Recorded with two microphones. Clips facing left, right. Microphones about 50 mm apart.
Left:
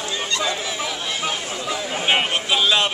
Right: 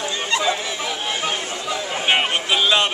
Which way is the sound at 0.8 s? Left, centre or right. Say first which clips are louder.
Right 1 dB; centre.